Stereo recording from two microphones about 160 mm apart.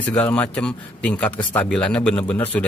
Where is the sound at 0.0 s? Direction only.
10° left (ahead or behind).